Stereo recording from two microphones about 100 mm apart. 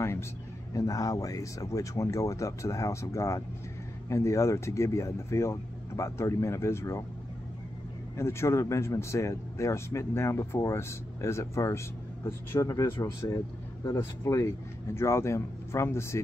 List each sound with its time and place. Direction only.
0.7 s speech: 35° left (ahead or behind)
8.2 s speech: 25° left (ahead or behind)